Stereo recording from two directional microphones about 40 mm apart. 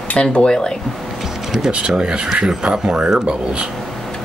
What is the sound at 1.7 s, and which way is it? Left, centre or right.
Speech, right.